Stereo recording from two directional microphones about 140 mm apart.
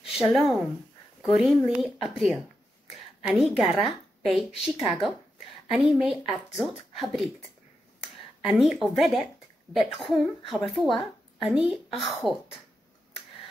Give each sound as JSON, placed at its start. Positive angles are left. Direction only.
{"t": 0.0, "sound": "a woman's voice", "side_deg": -5}
{"t": 8.5, "sound": "a woman's voice", "side_deg": 0}